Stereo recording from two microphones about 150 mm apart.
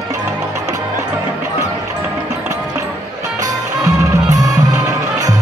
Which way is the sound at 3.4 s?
20° right (ahead or behind).